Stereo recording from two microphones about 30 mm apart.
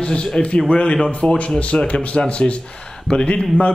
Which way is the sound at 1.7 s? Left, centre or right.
Left.